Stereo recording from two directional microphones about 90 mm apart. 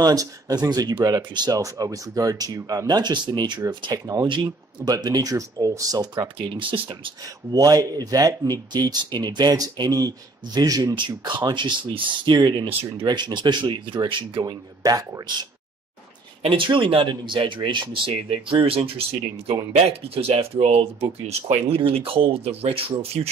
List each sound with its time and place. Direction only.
0.0 s speech: 40° right (ahead or behind)
3.8 s speech: 45° right (ahead or behind)
4.3 s speech: 60° right (ahead or behind)
4.9 s speech: 45° right (ahead or behind)
6.4 s speech: 55° right (ahead or behind)
7.5 s speech: 40° right (ahead or behind)
11.0 s speech: 60° right (ahead or behind)
14.4 s speech: 45° right (ahead or behind)
16.4 s speech: 65° right (ahead or behind); by 22.8 s 90° right